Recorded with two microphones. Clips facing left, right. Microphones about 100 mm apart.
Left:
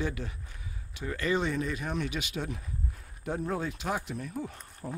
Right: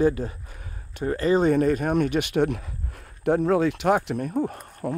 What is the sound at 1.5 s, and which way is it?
Speech, 55° right (ahead or behind).